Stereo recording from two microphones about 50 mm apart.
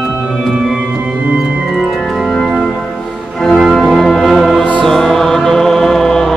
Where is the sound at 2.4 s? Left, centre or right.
Centre.